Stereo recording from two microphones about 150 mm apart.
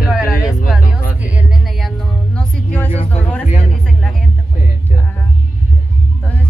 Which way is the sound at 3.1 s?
10° left (ahead or behind).